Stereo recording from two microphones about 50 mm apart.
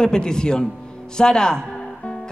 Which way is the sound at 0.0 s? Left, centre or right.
Centre.